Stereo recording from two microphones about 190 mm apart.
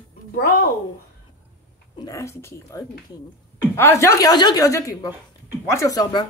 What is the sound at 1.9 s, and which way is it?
Speech, 15° left (ahead or behind).